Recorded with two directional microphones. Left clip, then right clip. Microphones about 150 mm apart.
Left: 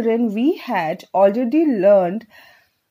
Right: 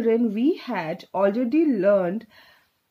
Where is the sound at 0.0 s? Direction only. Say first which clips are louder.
Left 3 dB; 30° left (ahead or behind).